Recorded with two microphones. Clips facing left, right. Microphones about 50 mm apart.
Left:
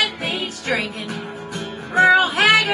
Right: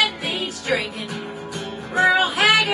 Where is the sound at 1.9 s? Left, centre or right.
Centre.